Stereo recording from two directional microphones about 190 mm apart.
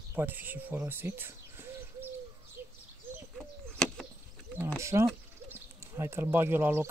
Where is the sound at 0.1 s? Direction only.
10° right (ahead or behind).